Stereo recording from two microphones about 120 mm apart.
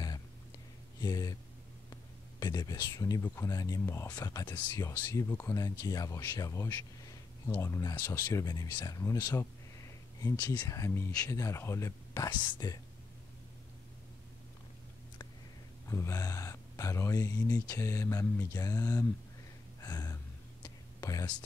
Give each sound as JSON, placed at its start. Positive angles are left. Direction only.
{"t": 1.0, "sound": "speech", "side_deg": 30}
{"t": 2.4, "sound": "speech", "side_deg": 35}
{"t": 8.5, "sound": "speech", "side_deg": 35}
{"t": 12.3, "sound": "speech", "side_deg": 35}
{"t": 15.9, "sound": "speech", "side_deg": 25}
{"t": 19.8, "sound": "gasp", "side_deg": 30}
{"t": 20.6, "sound": "whispering", "side_deg": 30}